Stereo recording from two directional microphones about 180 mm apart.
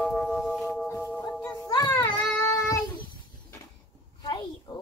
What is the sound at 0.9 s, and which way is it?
Child singing, 10° left (ahead or behind).